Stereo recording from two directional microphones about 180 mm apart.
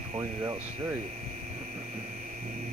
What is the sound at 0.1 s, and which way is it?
Speech, 30° right (ahead or behind).